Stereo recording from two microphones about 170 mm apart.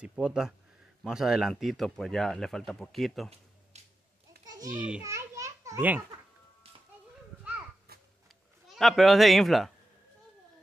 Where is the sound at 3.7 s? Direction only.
40° right (ahead or behind).